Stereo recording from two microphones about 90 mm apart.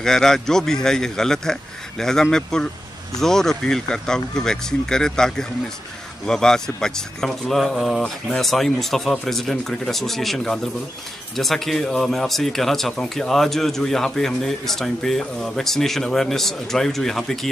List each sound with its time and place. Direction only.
0.0 s speech: 5° left (ahead or behind)